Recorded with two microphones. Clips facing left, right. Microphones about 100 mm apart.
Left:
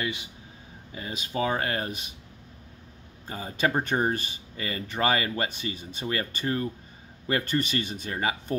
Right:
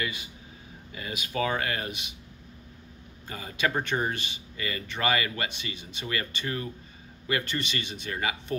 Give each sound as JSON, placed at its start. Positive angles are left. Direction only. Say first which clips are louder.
{"t": 0.0, "sound": "speech", "louder": "left 2 dB", "side_deg": 20}
{"t": 0.9, "sound": "speech", "louder": "left 1 dB", "side_deg": 30}
{"t": 1.6, "sound": "speech", "louder": "left 2 dB", "side_deg": 40}
{"t": 3.3, "sound": "speech", "louder": "left 2 dB", "side_deg": 40}